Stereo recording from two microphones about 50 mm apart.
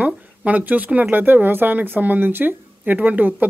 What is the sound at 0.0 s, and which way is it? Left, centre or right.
Speech, right.